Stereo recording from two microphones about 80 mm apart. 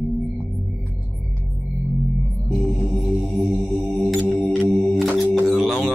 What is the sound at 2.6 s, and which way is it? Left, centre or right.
Mantra, centre.